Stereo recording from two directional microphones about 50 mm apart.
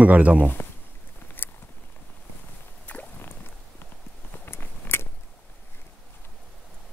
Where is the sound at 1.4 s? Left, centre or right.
Left.